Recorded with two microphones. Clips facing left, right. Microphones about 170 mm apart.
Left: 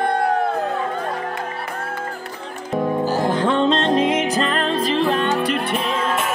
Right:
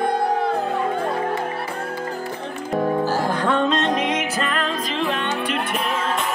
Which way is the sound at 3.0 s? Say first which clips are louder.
Left 2 dB; 20° left (ahead or behind).